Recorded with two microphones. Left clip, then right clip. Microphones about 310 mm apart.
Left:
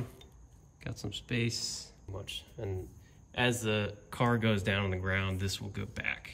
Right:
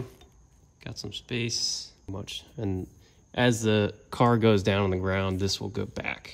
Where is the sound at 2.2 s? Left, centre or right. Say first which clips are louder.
Right 5 dB; centre.